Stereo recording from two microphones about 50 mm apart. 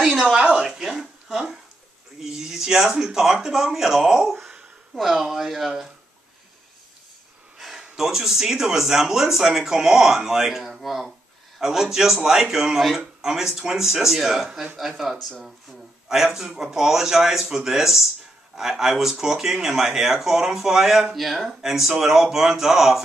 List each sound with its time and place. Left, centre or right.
0.2 s a sound: centre
2.1 s speech: centre
7.5 s speech: centre